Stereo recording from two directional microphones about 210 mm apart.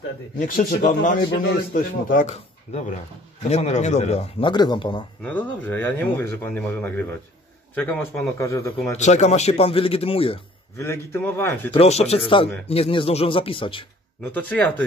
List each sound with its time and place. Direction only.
0.4 s a man's voice: 40° left (ahead or behind); by 5.0 s 20° left (ahead or behind)
5.2 s speech: 5° left (ahead or behind)
8.4 s speech: 15° left (ahead or behind)
8.9 s a man's voice: 35° left (ahead or behind)
10.8 s speech: 10° left (ahead or behind)
11.7 s a man's voice: 30° left (ahead or behind)
14.3 s speech: 5° left (ahead or behind)